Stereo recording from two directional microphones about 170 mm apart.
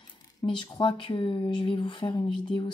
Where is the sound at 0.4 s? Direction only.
25° left (ahead or behind).